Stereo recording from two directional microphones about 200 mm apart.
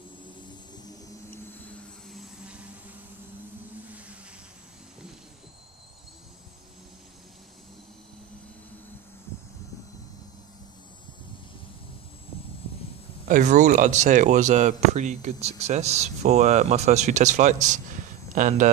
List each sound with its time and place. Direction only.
2.0 s vehicle: 5° right (ahead or behind)
13.3 s speech: 35° right (ahead or behind)